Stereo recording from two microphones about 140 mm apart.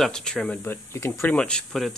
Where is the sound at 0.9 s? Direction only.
20° left (ahead or behind).